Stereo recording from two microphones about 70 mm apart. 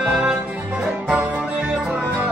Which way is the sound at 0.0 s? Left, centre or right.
Right.